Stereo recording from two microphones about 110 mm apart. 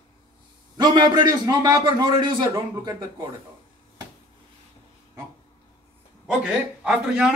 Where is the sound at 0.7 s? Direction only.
40° right (ahead or behind).